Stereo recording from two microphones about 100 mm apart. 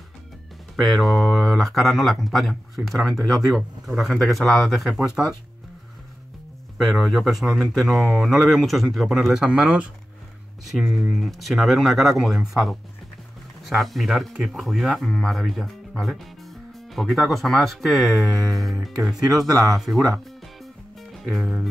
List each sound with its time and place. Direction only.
0.7 s speech: centre (ahead or behind)
6.8 s speech: centre (ahead or behind)
10.6 s speech: centre (ahead or behind)
19.2 s speech: 35° right (ahead or behind)
19.8 s speech: centre (ahead or behind)
20.2 s music: centre (ahead or behind)